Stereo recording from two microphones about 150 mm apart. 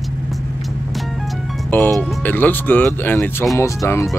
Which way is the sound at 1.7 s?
15° left (ahead or behind).